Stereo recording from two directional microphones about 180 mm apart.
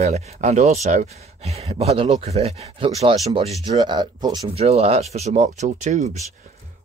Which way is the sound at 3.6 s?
25° right (ahead or behind).